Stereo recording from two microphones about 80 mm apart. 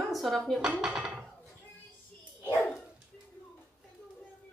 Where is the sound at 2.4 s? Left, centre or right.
Left.